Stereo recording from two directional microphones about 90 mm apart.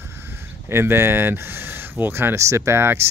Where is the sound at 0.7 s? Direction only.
25° right (ahead or behind).